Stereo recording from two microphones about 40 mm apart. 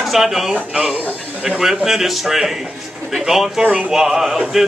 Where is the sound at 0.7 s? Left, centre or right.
Centre.